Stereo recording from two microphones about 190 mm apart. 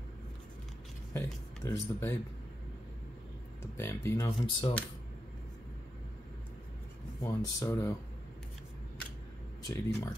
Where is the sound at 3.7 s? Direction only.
15° left (ahead or behind).